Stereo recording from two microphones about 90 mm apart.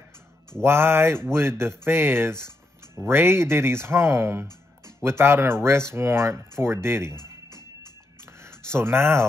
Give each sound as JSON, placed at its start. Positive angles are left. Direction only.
{"t": 0.6, "sound": "speech", "side_deg": -25}
{"t": 7.2, "sound": "music", "side_deg": 50}
{"t": 8.3, "sound": "a sound", "side_deg": -30}